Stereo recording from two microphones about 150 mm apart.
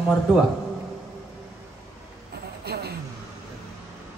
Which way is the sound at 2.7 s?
90° right.